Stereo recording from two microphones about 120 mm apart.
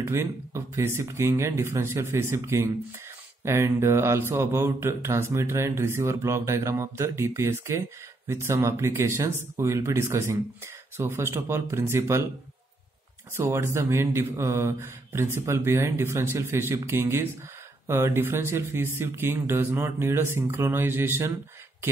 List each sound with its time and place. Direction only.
0.0 s speech: 20° right (ahead or behind)
13.4 s speech: 20° right (ahead or behind)